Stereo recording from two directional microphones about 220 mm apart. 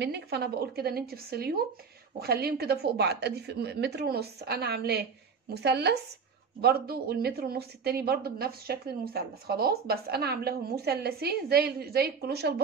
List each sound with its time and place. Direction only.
0.0 s a woman's voice: 50° right (ahead or behind)